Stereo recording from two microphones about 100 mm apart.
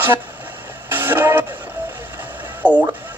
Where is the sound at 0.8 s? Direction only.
20° right (ahead or behind).